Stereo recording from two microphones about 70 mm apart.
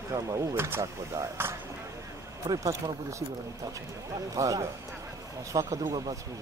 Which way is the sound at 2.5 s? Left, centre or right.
Right.